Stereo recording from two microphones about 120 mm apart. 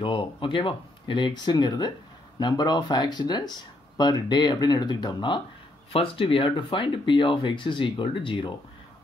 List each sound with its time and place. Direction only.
0.0 s speech: 45° left (ahead or behind)
5.9 s speech: 50° left (ahead or behind)